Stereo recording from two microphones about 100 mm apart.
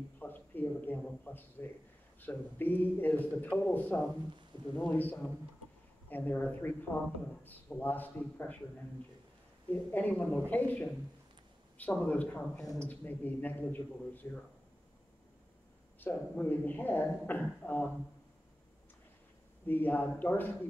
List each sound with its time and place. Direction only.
0.2 s a sound: 20° left (ahead or behind)
2.2 s speech: 20° left (ahead or behind)
9.7 s speech: 15° left (ahead or behind)
16.0 s speech: 20° left (ahead or behind)
19.6 s speech: 20° left (ahead or behind)